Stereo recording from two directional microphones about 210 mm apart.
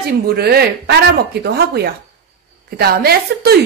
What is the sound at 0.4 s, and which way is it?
A woman's voice, 50° right (ahead or behind).